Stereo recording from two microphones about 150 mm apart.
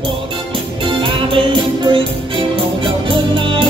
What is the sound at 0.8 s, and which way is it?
Music, 35° right (ahead or behind).